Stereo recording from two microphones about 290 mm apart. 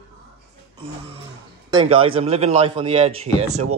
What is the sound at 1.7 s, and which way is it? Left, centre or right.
Speech, centre.